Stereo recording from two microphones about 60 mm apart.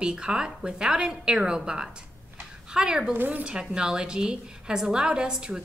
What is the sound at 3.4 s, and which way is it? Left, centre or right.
A woman's voice, centre.